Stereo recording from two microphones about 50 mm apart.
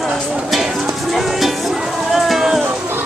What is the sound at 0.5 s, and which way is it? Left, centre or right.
Music, centre.